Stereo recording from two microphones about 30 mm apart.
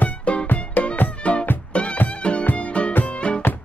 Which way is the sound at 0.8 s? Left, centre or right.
Left.